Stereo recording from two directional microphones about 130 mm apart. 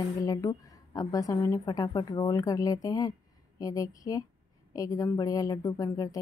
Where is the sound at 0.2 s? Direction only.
30° left (ahead or behind).